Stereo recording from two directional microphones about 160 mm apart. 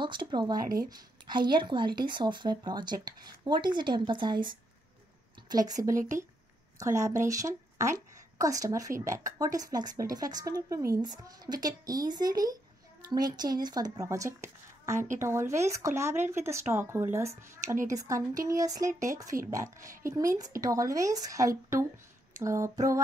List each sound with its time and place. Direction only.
0.0 s speech: 30° right (ahead or behind)